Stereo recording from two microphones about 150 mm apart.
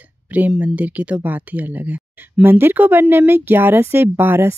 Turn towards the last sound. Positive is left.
turn(degrees=-15)  # may be behind; listen again after turning